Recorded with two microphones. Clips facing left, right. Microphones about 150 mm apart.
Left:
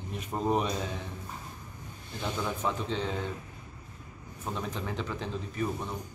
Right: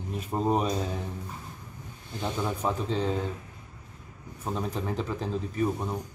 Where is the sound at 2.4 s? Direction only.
35° right (ahead or behind).